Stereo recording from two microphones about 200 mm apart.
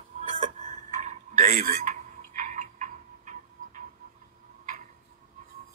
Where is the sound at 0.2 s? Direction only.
35° right (ahead or behind).